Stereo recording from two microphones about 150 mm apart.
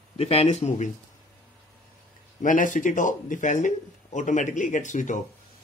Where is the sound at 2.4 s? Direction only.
60° left (ahead or behind).